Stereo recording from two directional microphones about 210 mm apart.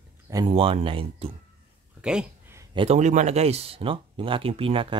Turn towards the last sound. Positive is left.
turn(degrees=-25)  # may be behind; listen again after turning